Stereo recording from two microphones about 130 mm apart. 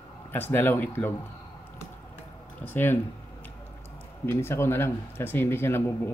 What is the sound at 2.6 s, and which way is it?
Speech, 15° left (ahead or behind).